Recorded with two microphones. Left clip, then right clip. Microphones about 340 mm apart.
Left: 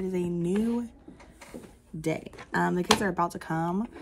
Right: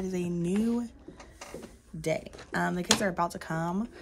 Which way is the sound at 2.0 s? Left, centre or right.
Centre.